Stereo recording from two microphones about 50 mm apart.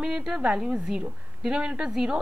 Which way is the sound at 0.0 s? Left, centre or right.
Centre.